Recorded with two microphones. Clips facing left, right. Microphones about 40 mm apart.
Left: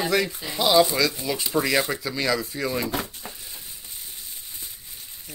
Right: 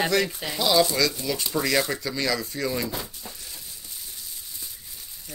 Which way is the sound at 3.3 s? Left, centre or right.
Left.